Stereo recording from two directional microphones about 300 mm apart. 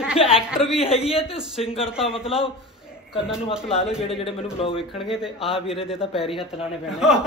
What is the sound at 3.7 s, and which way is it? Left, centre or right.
Speech, centre.